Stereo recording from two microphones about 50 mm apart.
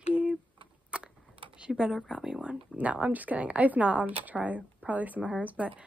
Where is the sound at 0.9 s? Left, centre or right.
Centre.